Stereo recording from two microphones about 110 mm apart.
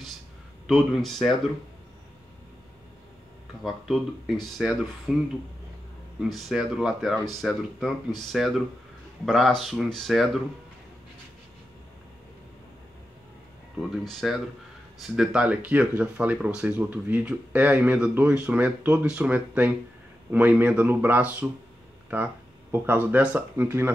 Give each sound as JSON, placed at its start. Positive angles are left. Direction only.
{"t": 0.7, "sound": "speech", "side_deg": 5}
{"t": 3.6, "sound": "speech", "side_deg": 0}
{"t": 6.2, "sound": "speech", "side_deg": 0}
{"t": 14.0, "sound": "speech", "side_deg": 0}